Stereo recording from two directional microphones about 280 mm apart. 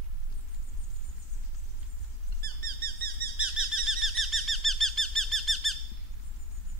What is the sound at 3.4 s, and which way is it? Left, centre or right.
Bird, centre.